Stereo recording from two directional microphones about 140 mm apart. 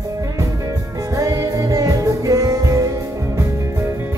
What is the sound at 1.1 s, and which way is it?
Music, 25° right (ahead or behind).